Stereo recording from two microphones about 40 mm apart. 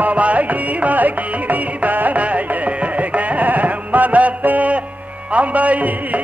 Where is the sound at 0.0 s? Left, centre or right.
Right.